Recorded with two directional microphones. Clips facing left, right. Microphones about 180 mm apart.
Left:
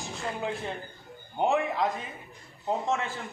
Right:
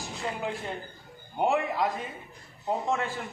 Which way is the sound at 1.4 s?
Centre (ahead or behind).